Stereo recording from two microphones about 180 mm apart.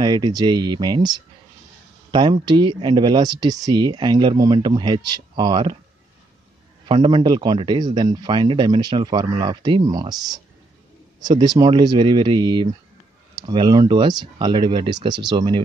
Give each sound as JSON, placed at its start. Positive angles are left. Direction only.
{"t": 0.0, "sound": "speech", "side_deg": -25}
{"t": 6.9, "sound": "speech", "side_deg": -25}